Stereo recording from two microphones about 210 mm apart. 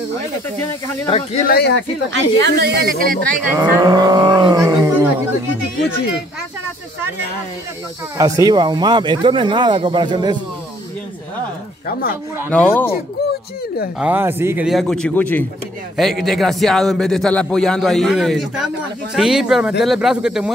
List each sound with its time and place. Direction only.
1.0 s speech: 30° left (ahead or behind)
1.5 s speech: 50° left (ahead or behind)
2.1 s speech: 50° right (ahead or behind)
3.5 s speech: 20° right (ahead or behind)
8.2 s speech: 20° right (ahead or behind)
12.4 s speech: 10° left (ahead or behind)
13.9 s a man's voice: 5° right (ahead or behind)